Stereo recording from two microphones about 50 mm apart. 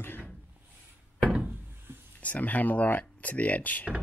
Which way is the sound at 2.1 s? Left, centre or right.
Left.